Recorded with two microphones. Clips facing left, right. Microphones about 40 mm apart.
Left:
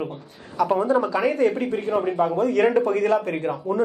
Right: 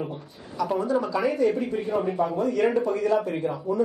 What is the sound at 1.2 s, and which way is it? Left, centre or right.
Speech, left.